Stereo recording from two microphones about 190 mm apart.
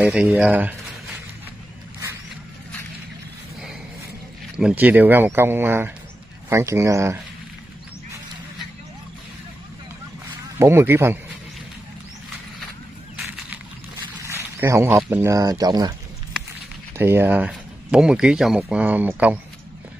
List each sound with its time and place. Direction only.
0.0 s speech: 5° right (ahead or behind)
4.6 s speech: 5° right (ahead or behind)
10.6 s speech: 10° right (ahead or behind)
14.2 s speech: 15° right (ahead or behind)
16.9 s speech: 10° right (ahead or behind)